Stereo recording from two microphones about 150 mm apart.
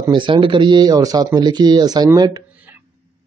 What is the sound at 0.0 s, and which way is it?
Speech, 30° right (ahead or behind).